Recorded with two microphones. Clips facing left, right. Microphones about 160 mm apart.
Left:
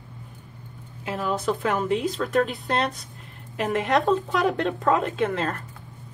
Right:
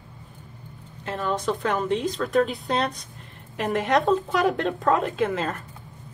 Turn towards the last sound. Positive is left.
turn(degrees=0)  # may be behind; listen again after turning